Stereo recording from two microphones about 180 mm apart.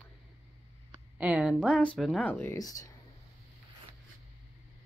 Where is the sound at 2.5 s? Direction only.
20° left (ahead or behind).